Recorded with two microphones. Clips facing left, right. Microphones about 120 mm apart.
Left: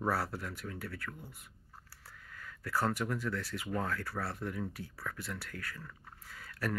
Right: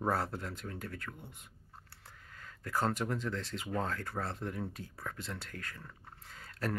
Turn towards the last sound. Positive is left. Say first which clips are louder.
# even
turn(degrees=-25)  # may be behind; listen again after turning